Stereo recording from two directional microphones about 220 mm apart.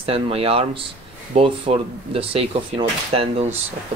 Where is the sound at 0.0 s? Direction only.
25° right (ahead or behind).